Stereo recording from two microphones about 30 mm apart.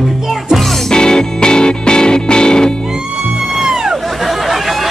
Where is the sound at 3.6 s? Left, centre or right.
Right.